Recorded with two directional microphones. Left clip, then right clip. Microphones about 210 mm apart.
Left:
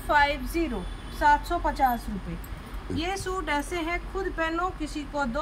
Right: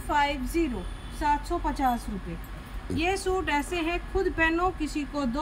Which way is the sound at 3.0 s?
25° left (ahead or behind).